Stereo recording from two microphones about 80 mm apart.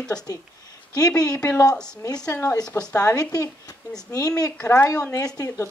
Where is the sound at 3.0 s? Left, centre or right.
Left.